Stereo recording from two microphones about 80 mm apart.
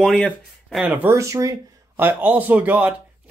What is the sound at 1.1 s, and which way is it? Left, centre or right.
Speech, right.